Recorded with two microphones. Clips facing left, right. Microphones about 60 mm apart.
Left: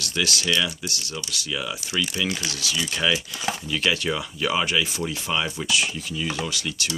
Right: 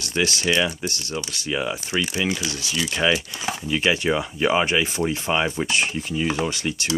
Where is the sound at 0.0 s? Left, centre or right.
Right.